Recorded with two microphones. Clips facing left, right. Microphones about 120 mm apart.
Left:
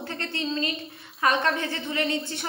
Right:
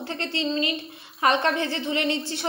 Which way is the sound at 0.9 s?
25° right (ahead or behind).